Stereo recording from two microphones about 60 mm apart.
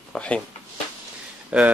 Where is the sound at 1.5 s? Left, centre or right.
Centre.